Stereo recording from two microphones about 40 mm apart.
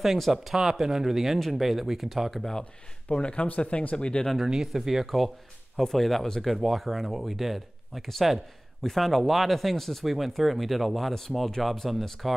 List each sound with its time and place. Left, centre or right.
0.0 s speech: centre
3.1 s speech: left
3.4 s speech: left
4.5 s speech: centre